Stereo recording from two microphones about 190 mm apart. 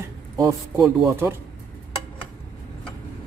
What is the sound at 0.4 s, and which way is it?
Speech, 20° right (ahead or behind).